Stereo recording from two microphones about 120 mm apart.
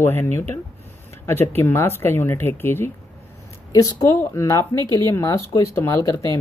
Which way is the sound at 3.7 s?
30° left (ahead or behind).